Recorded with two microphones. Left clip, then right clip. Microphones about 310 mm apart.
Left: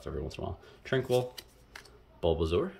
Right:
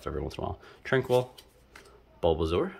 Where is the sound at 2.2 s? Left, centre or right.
Centre.